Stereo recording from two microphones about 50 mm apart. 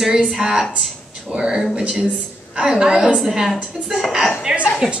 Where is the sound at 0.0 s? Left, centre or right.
Centre.